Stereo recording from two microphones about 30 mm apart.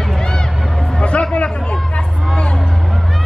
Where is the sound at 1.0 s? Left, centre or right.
Left.